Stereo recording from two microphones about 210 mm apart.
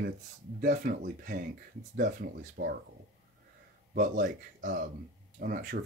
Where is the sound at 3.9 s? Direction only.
35° right (ahead or behind).